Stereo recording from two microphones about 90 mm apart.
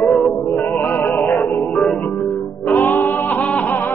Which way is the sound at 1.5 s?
Centre (ahead or behind).